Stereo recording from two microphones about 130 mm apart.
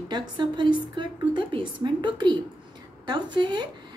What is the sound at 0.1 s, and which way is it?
A woman's voice, 35° right (ahead or behind).